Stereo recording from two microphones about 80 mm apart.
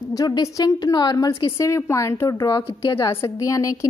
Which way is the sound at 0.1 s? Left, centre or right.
Left.